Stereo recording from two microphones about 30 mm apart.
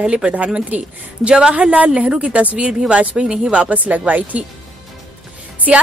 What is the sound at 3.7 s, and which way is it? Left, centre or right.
Speech, right.